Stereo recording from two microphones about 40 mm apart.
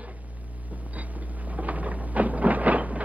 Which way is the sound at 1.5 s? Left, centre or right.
Right.